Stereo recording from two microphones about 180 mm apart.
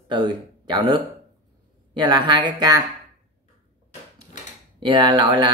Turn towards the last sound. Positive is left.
turn(degrees=-25)  # may be behind; listen again after turning